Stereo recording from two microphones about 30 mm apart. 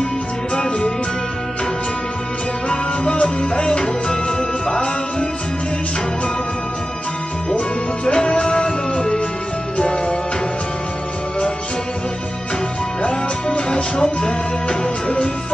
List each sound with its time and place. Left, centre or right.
0.6 s music: left
2.7 s music: left
8.1 s music: left
13.0 s music: left
13.9 s music: left
14.7 s music: left